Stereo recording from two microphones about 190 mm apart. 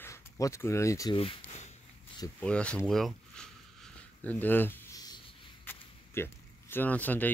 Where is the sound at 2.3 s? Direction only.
5° left (ahead or behind).